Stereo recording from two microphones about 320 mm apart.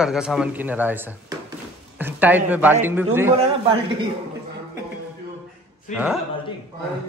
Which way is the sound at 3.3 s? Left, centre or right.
Centre.